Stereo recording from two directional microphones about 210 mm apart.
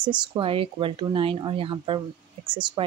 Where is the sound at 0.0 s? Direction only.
25° right (ahead or behind).